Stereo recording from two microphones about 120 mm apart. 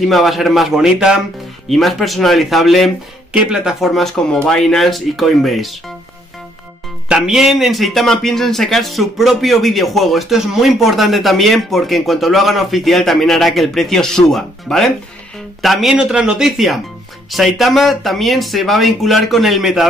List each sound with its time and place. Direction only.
0.0 s a man's voice: centre (ahead or behind)
7.1 s a man's voice: 5° right (ahead or behind)